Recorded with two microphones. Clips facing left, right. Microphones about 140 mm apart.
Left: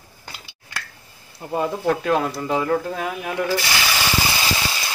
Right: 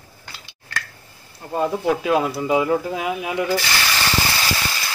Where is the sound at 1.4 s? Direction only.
20° left (ahead or behind).